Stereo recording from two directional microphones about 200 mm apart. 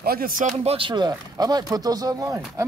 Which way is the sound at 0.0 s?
45° right (ahead or behind).